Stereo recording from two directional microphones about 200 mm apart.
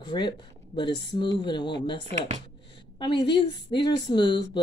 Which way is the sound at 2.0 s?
35° right (ahead or behind).